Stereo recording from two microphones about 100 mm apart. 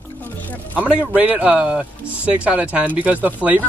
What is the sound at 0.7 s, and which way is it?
Speech, 15° right (ahead or behind).